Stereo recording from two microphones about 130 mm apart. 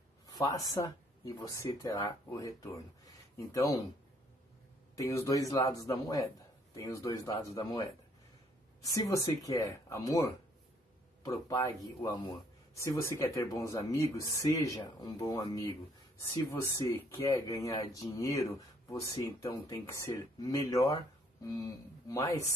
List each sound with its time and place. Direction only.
0.3 s speech: 25° left (ahead or behind)
4.9 s speech: 25° left (ahead or behind)
8.8 s speech: 25° left (ahead or behind)
11.5 s speech: 25° left (ahead or behind)
12.7 s speech: 20° left (ahead or behind)